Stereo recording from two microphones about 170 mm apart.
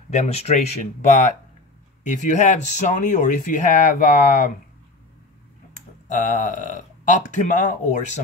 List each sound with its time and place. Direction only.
0.1 s speech: 40° left (ahead or behind)
6.0 s speech: 50° left (ahead or behind)